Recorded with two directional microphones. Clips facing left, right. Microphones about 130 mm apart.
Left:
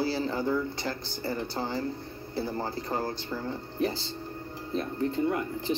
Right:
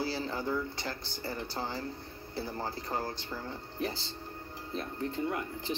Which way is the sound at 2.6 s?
35° left (ahead or behind).